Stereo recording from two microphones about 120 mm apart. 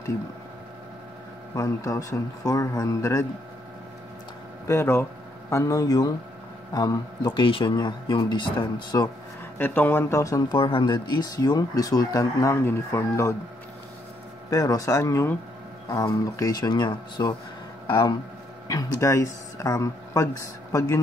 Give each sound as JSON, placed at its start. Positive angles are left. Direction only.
{"t": 1.5, "sound": "speech", "side_deg": 25}
{"t": 4.6, "sound": "speech", "side_deg": 20}
{"t": 9.6, "sound": "speech", "side_deg": 15}
{"t": 10.6, "sound": "speech", "side_deg": 40}
{"t": 14.5, "sound": "speech", "side_deg": 30}
{"t": 16.3, "sound": "speech", "side_deg": 30}